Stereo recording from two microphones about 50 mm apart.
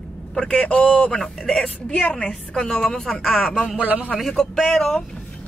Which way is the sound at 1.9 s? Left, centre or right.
Left.